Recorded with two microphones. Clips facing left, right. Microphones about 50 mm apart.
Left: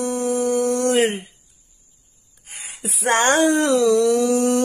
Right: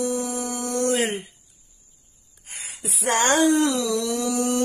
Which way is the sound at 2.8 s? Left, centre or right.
Left.